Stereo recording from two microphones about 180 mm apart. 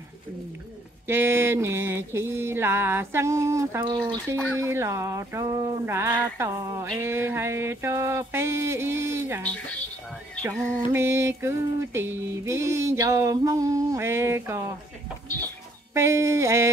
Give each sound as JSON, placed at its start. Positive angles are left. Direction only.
{"t": 1.0, "sound": "music", "side_deg": -10}
{"t": 3.8, "sound": "speech", "side_deg": -25}
{"t": 4.6, "sound": "music", "side_deg": -15}
{"t": 10.9, "sound": "music", "side_deg": -15}
{"t": 15.9, "sound": "music", "side_deg": -15}